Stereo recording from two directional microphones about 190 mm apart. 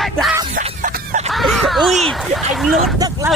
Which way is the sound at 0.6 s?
45° right (ahead or behind).